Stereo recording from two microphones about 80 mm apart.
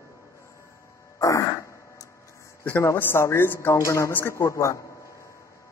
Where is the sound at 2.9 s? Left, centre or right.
Left.